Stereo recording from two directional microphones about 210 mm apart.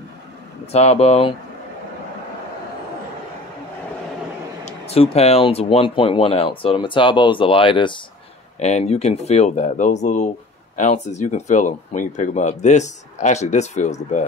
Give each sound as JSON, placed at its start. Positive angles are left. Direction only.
{"t": 0.7, "sound": "speech", "side_deg": 30}
{"t": 4.6, "sound": "speech", "side_deg": 30}